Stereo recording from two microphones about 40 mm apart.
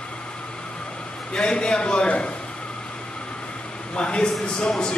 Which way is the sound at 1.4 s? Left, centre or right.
Left.